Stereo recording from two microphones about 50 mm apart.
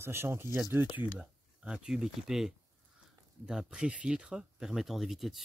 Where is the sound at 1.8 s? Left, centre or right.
Centre.